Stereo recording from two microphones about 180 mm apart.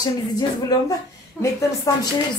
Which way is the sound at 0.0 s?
20° left (ahead or behind).